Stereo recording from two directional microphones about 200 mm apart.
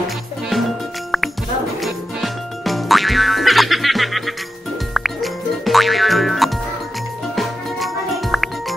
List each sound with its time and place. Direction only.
1.8 s music: centre (ahead or behind)